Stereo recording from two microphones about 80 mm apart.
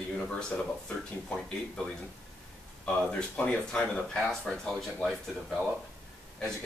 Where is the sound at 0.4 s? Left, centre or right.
Centre.